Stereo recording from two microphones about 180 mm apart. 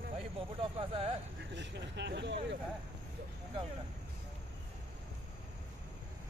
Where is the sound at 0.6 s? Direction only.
30° right (ahead or behind).